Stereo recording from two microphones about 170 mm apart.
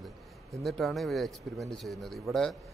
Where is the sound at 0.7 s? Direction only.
Centre (ahead or behind).